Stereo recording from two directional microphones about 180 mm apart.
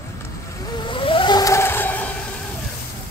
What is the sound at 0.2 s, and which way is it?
Vehicle, 25° left (ahead or behind).